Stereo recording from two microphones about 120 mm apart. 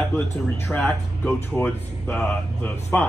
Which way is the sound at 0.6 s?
15° left (ahead or behind).